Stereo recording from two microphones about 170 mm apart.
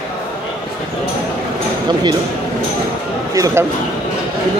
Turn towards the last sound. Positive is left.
turn(degrees=-20)  # may be behind; listen again after turning